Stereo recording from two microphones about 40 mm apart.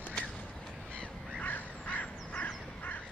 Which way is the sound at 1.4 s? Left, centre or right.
Left.